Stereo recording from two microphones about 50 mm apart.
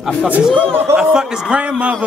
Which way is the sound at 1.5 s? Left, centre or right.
Right.